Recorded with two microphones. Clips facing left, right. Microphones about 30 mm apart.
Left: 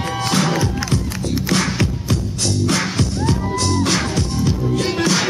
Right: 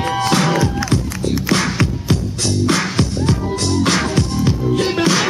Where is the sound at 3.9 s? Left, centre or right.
Centre.